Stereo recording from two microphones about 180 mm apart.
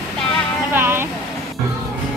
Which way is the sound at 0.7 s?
10° right (ahead or behind).